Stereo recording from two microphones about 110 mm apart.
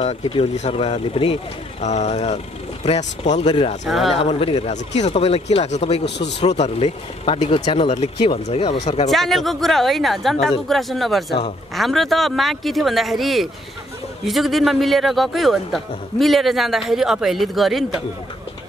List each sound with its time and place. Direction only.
0.0 s speech: 65° left (ahead or behind); by 3.5 s 85° left
3.8 s a man's voice: centre (ahead or behind)
4.1 s speech: 60° left (ahead or behind)
4.6 s speech: 90° left
7.3 s speech: 65° left (ahead or behind)
9.1 s a man's voice: centre (ahead or behind)